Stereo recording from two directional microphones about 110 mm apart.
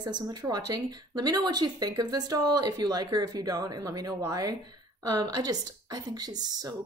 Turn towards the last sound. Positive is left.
turn(degrees=-35)  # may be behind; listen again after turning